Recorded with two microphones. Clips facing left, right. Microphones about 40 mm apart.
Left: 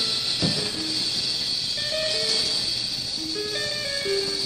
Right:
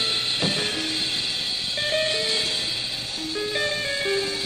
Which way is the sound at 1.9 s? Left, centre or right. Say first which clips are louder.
Right 3 dB; right.